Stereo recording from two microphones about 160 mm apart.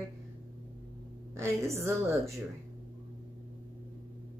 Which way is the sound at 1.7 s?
20° right (ahead or behind).